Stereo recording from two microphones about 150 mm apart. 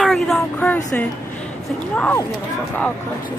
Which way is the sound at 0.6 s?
10° left (ahead or behind).